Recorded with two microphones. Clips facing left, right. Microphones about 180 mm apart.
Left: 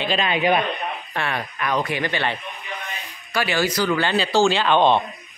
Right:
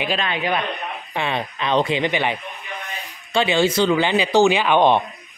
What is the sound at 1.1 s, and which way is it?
Speech, 20° right (ahead or behind).